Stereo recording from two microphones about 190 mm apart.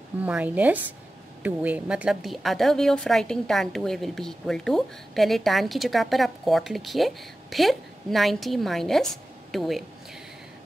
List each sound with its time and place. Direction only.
0.2 s a woman's voice: 5° right (ahead or behind)